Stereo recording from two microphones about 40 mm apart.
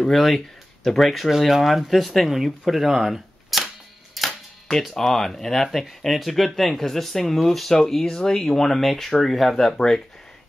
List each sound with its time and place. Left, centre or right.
0.0 s speech: centre
8.0 s speech: centre